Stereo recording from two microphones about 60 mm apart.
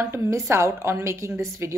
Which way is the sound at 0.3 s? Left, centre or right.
Right.